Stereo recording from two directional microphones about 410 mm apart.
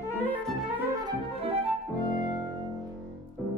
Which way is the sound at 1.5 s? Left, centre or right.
Centre.